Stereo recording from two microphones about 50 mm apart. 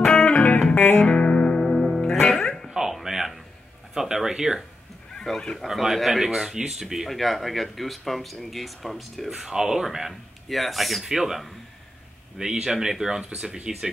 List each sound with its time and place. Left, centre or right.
0.2 s music: left; by 2.7 s centre
2.7 s music: centre
3.9 s speech: centre
5.1 s a sound: centre
5.6 s speech: centre